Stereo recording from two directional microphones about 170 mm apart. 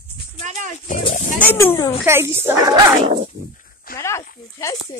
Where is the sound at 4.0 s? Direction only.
15° left (ahead or behind).